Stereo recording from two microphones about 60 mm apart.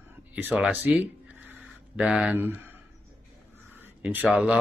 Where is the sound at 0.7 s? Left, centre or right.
Right.